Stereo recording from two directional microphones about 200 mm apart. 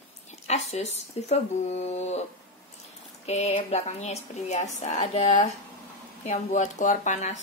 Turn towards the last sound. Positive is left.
turn(degrees=35)  # may be behind; listen again after turning